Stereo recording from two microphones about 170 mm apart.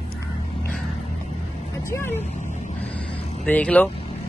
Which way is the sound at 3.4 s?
10° left (ahead or behind).